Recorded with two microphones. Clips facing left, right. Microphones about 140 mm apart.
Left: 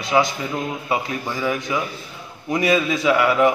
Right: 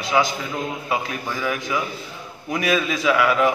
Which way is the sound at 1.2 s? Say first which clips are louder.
Left 2 dB; 20° left (ahead or behind).